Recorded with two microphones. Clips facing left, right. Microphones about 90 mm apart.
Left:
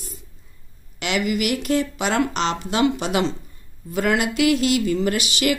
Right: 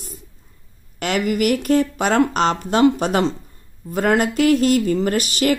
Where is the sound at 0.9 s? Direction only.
45° right (ahead or behind).